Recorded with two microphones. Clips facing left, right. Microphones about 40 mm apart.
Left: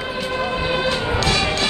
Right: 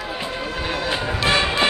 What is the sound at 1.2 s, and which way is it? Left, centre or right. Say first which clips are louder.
Music: right 4 dB; right.